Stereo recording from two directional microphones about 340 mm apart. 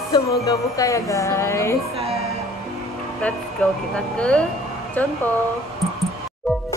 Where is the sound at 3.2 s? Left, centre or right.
Centre.